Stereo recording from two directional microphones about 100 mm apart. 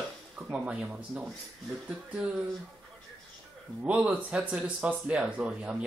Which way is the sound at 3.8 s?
15° right (ahead or behind).